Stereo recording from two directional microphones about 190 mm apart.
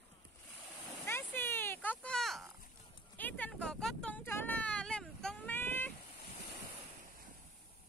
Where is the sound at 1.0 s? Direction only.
10° left (ahead or behind).